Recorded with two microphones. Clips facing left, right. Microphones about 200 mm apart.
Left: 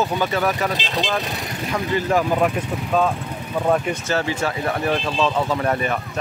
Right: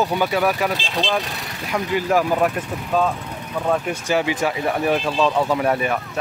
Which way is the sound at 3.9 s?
15° right (ahead or behind).